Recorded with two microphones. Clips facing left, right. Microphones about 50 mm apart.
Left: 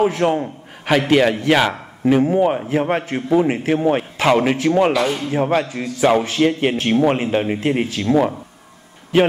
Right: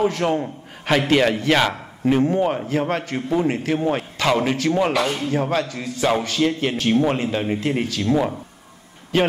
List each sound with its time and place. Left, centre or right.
0.0 s a man's voice: centre